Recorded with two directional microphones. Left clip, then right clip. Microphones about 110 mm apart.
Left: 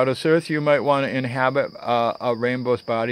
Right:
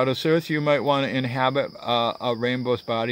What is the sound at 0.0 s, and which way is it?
Speech, 25° right (ahead or behind).